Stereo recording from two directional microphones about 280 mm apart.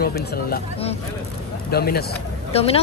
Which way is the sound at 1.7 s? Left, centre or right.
Left.